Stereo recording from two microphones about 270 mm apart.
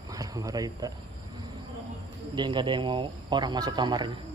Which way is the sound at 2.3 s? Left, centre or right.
Centre.